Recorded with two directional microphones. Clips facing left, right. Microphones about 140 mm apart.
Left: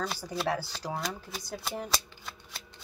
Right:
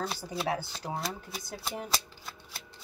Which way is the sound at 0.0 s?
25° right (ahead or behind).